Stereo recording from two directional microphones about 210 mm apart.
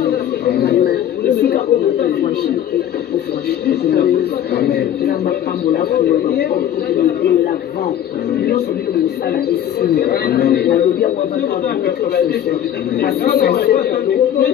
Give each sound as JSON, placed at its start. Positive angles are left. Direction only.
{"t": 0.0, "sound": "chatter", "side_deg": 50}
{"t": 3.6, "sound": "a man's voice", "side_deg": 50}
{"t": 8.5, "sound": "a man's voice", "side_deg": 50}
{"t": 13.0, "sound": "a man's voice", "side_deg": 50}